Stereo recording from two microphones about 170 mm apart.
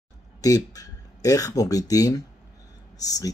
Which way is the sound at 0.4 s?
20° left (ahead or behind).